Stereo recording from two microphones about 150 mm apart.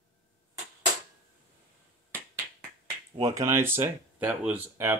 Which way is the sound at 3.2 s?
20° right (ahead or behind).